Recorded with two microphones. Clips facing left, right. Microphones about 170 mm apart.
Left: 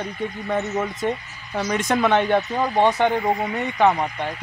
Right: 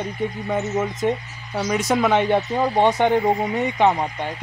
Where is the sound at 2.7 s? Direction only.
15° right (ahead or behind).